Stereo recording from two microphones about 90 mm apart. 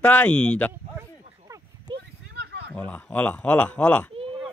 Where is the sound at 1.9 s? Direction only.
65° right (ahead or behind).